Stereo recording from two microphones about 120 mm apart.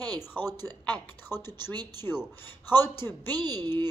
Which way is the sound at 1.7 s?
35° right (ahead or behind).